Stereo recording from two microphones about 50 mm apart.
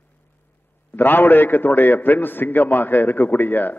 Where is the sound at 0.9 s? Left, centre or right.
Left.